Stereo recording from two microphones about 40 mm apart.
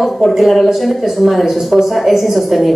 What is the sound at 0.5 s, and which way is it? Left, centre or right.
Speech, centre.